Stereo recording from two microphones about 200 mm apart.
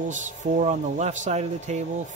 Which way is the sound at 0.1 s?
35° right (ahead or behind).